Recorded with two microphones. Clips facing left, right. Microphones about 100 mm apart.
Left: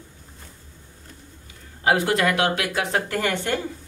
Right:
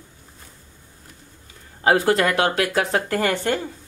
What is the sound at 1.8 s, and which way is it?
Speech, 35° right (ahead or behind).